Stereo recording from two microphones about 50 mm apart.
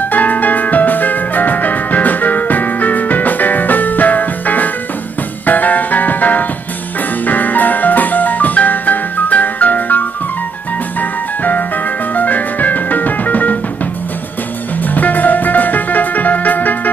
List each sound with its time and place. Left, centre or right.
0.1 s music: left
15.0 s music: left